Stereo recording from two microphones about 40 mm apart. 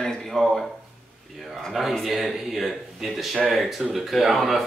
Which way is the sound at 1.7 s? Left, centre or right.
Centre.